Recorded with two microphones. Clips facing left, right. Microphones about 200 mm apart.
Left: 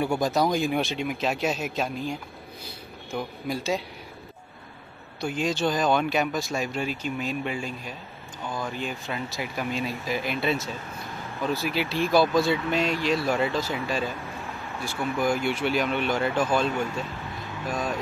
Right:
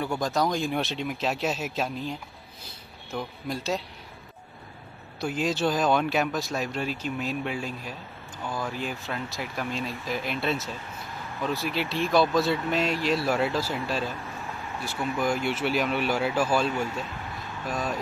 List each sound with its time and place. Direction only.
0.0 s speech: 10° left (ahead or behind)
5.2 s speech: 5° right (ahead or behind)
15.1 s speech: 5° right (ahead or behind)